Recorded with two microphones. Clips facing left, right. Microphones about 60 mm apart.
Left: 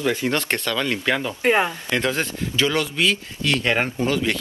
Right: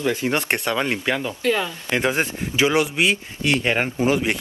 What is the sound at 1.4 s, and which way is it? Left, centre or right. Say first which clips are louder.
Speech: left 3 dB; left.